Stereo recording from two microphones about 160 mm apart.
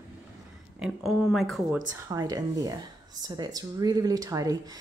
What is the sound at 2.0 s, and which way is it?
Speech, 20° right (ahead or behind).